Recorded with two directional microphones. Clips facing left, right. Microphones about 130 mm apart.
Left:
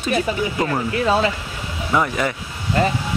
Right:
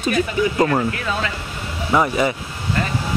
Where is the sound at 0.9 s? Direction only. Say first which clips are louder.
Left 6 dB; 30° left (ahead or behind).